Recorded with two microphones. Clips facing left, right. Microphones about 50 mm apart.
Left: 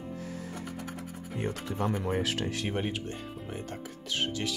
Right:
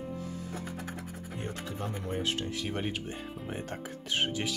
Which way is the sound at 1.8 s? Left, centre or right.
Left.